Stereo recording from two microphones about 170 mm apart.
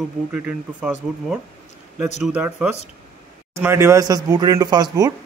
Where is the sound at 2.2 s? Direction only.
10° right (ahead or behind); by 5.1 s 25° right (ahead or behind).